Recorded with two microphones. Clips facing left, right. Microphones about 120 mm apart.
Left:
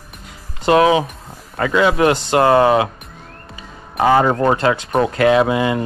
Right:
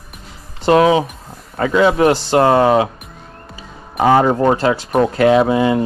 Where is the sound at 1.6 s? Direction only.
35° right (ahead or behind).